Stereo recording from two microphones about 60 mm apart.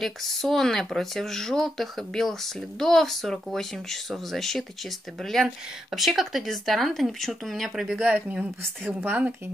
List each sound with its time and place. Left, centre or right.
0.0 s speech: centre
8.0 s speech: right